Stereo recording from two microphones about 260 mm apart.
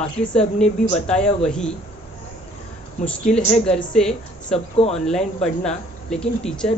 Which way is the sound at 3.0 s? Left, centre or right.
Centre.